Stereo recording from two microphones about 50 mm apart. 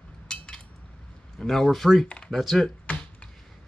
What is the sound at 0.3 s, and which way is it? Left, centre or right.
Cutlery, centre.